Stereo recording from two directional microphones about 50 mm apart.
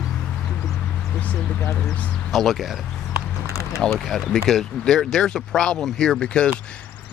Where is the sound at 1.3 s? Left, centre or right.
Left.